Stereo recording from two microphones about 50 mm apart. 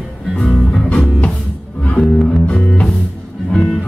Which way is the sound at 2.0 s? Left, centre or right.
Centre.